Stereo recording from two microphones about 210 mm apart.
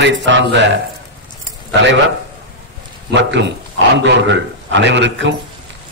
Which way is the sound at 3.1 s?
55° right (ahead or behind).